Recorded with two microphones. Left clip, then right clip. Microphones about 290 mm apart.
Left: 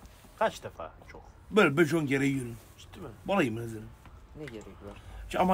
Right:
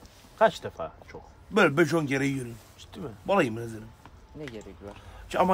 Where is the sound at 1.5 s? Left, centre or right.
Centre.